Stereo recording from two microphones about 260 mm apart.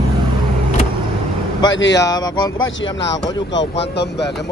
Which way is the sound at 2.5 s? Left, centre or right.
Left.